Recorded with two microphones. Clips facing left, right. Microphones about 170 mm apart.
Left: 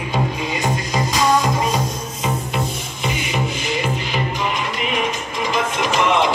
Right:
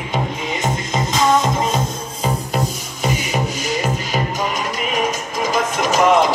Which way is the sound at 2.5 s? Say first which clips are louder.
Right 2 dB; 40° right (ahead or behind).